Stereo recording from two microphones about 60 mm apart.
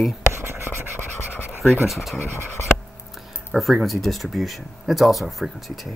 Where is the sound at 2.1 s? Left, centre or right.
Left.